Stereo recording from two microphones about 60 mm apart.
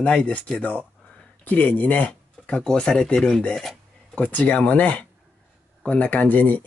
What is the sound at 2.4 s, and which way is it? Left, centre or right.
Speech, centre.